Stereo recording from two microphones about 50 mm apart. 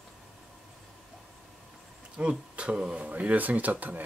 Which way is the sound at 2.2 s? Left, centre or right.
Right.